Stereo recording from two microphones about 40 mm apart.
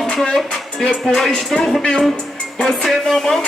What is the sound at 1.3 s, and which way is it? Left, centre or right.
Music, centre.